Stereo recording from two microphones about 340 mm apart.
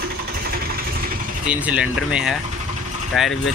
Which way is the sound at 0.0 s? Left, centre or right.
Right.